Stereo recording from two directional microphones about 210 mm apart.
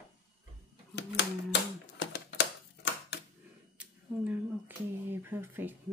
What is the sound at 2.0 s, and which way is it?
Typing, 55° left (ahead or behind).